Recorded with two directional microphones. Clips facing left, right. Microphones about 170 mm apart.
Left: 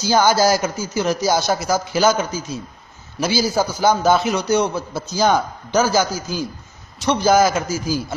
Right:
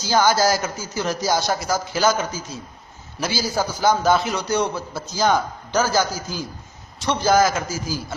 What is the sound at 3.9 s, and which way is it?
A man's voice, 20° left (ahead or behind).